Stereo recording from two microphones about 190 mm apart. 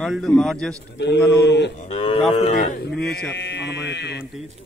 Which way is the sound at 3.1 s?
65° left (ahead or behind).